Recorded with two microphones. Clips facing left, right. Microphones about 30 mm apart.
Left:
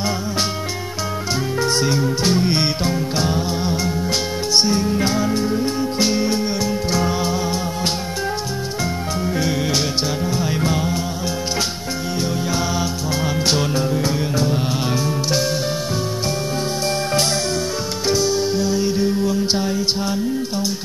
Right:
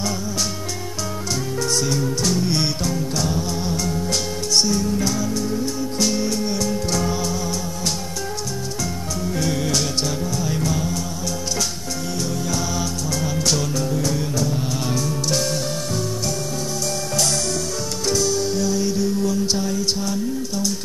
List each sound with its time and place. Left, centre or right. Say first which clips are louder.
1.6 s music: left 3 dB; left
9.2 s music: left 1 dB; left
12.4 s music: left 3 dB; left
18.0 s music: left 2 dB; left